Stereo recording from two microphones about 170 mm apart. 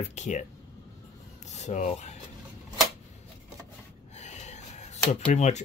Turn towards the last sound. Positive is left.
turn(degrees=40)  # may be behind; listen again after turning